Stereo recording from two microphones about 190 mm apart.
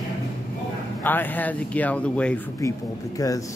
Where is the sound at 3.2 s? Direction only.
15° left (ahead or behind).